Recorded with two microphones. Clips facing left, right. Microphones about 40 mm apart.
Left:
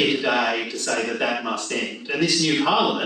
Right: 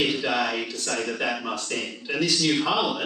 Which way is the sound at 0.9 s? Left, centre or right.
Left.